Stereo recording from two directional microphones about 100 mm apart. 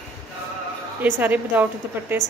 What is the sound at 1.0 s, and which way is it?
A woman's voice, 20° right (ahead or behind).